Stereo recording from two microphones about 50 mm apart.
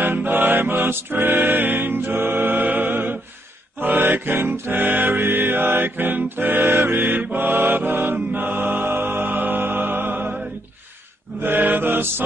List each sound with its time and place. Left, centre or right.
0.0 s music: right
7.3 s mantra: right
11.4 s music: right